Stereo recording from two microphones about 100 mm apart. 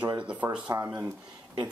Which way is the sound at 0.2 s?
10° right (ahead or behind).